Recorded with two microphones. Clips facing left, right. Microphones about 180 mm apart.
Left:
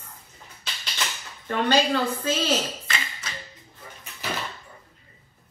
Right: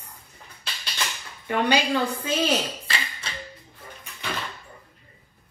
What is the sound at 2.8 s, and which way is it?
Tap, 35° right (ahead or behind).